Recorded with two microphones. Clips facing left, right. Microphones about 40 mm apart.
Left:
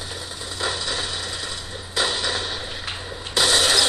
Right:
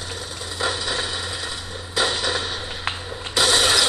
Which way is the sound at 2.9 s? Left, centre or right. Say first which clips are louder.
Right 1 dB; centre.